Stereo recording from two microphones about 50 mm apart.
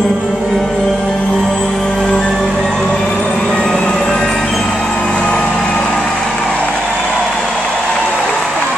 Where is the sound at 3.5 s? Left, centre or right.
Centre.